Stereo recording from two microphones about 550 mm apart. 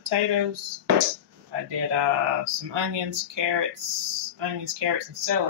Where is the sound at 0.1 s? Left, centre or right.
Right.